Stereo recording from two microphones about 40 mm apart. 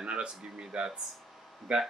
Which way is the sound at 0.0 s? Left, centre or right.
Right.